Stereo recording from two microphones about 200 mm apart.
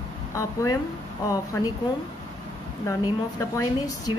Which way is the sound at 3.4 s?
15° left (ahead or behind).